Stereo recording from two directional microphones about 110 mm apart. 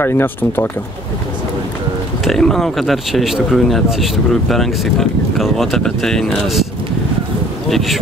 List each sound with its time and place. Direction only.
0.0 s speech: 20° left (ahead or behind)
2.2 s speech: 5° left (ahead or behind)
7.7 s speech: centre (ahead or behind)